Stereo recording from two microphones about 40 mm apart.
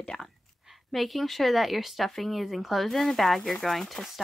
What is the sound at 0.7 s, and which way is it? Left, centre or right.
Speech, centre.